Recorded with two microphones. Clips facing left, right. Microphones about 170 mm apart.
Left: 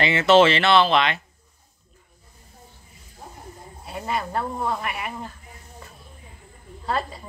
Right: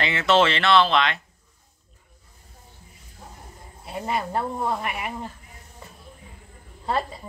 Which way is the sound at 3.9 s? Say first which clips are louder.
Right 1 dB; 25° right (ahead or behind).